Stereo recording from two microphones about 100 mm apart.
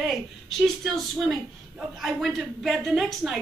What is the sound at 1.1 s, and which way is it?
A woman's voice, centre (ahead or behind).